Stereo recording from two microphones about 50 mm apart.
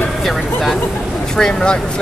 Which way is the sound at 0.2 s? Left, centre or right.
Centre.